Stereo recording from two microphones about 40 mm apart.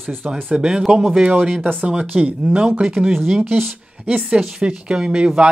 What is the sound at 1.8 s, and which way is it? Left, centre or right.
Speech, right.